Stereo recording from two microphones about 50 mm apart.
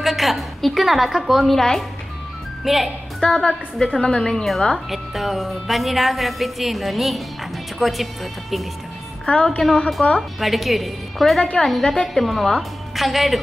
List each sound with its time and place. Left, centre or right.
0.0 s a woman's voice: centre
1.6 s speech: centre
2.6 s a woman's voice: centre
3.2 s a woman's voice: centre
9.2 s a woman's voice: left
9.8 s a woman's voice: centre